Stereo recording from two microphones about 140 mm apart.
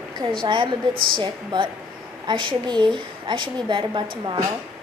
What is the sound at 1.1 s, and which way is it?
A woman's voice, 35° right (ahead or behind).